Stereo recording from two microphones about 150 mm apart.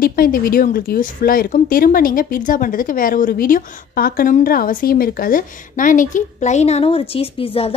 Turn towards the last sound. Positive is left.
turn(degrees=40)  # may be behind; listen again after turning